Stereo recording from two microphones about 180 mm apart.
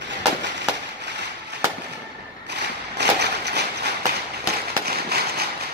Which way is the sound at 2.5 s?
70° right (ahead or behind).